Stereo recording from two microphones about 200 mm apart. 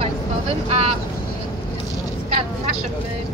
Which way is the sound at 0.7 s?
30° right (ahead or behind).